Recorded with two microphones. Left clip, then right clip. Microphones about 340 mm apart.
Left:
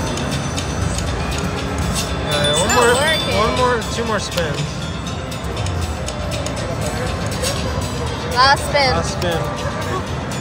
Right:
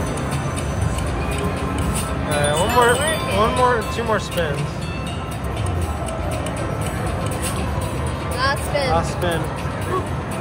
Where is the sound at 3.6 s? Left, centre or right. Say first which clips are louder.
Even; centre.